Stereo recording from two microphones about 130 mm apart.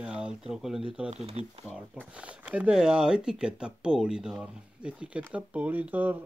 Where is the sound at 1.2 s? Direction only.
50° right (ahead or behind).